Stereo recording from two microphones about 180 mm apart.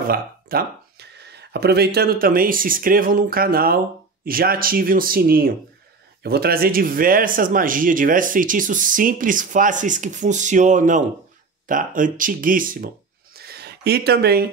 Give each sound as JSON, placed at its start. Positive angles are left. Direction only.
{"t": 0.1, "sound": "speech", "side_deg": -55}